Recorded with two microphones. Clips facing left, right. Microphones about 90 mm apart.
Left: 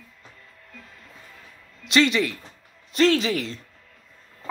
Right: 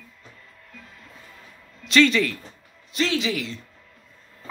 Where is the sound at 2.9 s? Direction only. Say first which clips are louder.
Left 5 dB; 45° left (ahead or behind).